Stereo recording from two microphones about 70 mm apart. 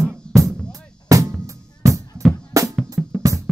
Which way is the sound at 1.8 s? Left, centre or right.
Right.